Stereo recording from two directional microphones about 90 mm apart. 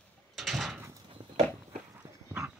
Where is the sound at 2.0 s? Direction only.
25° right (ahead or behind).